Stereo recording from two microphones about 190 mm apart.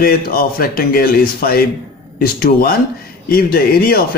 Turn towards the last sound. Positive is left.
turn(degrees=50)  # may be behind; listen again after turning